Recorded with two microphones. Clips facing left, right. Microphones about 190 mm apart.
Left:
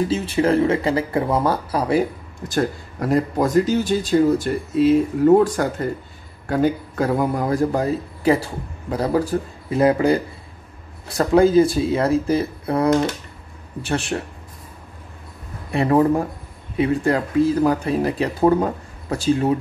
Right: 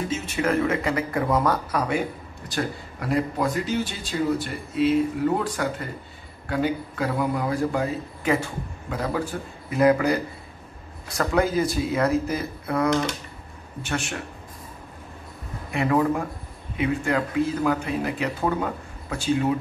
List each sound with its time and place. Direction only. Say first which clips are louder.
0.1 s speech: left 6 dB; 30° left (ahead or behind)
15.7 s speech: left 5 dB; 35° left (ahead or behind)